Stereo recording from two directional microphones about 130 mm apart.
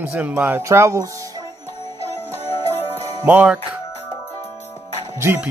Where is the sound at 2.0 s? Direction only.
50° left (ahead or behind).